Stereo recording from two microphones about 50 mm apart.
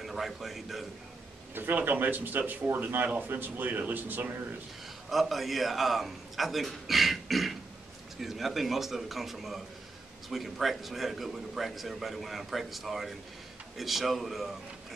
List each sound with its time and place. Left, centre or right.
0.0 s a man's voice: centre
1.5 s speech: right
5.1 s a man's voice: centre